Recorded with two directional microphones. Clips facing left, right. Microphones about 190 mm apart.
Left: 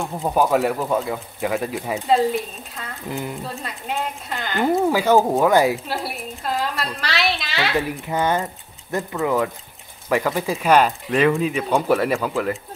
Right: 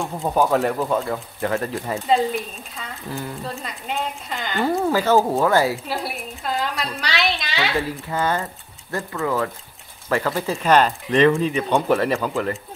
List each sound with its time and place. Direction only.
0.0 s speech: 5° left (ahead or behind)
3.1 s speech: 15° left (ahead or behind)
3.4 s speech: 5° left (ahead or behind)
5.9 s speech: centre (ahead or behind)
7.9 s speech: 15° left (ahead or behind)